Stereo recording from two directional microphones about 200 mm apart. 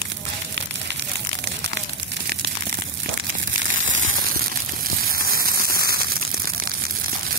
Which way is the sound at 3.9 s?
75° right (ahead or behind).